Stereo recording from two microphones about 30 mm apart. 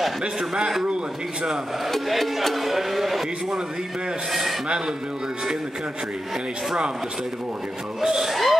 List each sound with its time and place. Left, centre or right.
0.2 s a man's voice: right
1.9 s speech: centre
4.3 s speech: centre
4.6 s a man's voice: right
8.2 s speech: centre